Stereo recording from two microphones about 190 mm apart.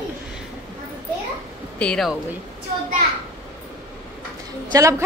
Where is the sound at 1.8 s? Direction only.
5° left (ahead or behind).